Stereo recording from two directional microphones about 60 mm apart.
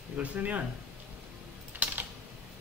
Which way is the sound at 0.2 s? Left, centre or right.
Right.